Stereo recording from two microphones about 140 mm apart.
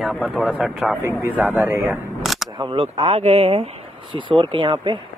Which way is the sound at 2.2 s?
Centre (ahead or behind).